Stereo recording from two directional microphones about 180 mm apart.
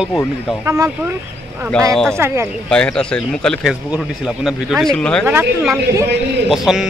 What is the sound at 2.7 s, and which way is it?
Speech, 5° left (ahead or behind).